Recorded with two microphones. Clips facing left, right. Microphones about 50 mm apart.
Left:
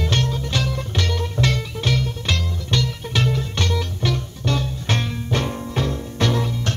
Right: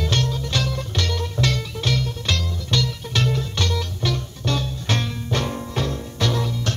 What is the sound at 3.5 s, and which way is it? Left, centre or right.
Music, left.